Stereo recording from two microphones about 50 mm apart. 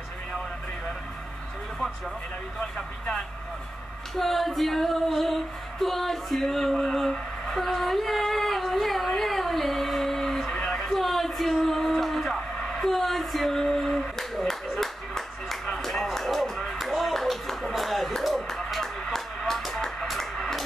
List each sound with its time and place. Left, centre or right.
2.6 s speech: centre
4.2 s female singing: centre
10.5 s a sound: centre
11.0 s music: centre
12.8 s speech: centre
14.5 s music: centre
16.7 s clapping: centre
19.1 s music: centre